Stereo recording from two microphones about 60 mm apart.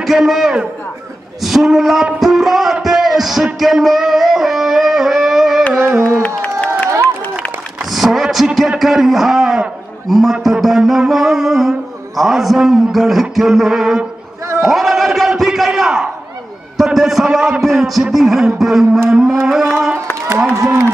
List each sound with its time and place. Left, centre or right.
0.0 s a man's voice: centre
1.4 s a sound: centre
2.1 s music: centre
5.8 s a sound: right
6.2 s crowd: left
7.8 s a man's voice: centre
14.6 s a sound: centre
16.7 s a man's voice: centre
19.0 s music: centre
20.2 s a man's voice: right